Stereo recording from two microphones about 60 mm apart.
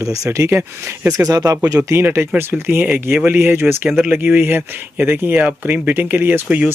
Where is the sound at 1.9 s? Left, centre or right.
Right.